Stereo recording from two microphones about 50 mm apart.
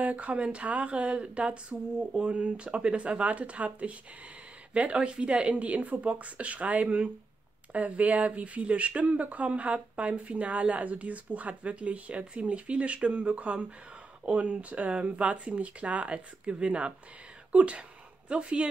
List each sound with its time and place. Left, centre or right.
0.0 s speech: right